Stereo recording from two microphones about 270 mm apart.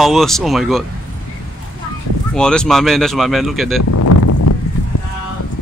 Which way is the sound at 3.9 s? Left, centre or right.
Left.